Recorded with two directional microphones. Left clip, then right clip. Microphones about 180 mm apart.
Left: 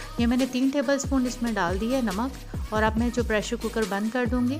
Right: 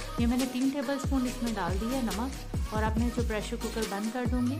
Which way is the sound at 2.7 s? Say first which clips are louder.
Left 7 dB; 35° left (ahead or behind).